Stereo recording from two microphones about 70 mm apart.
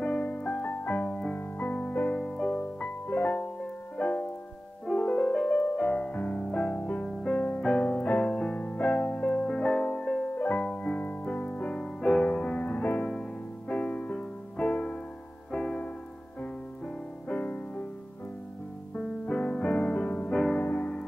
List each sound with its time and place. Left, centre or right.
0.0 s music: centre
2.1 s music: centre
11.0 s music: left
16.8 s music: centre
18.9 s music: centre